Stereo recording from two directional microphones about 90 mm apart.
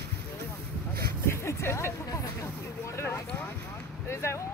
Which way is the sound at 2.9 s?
30° left (ahead or behind).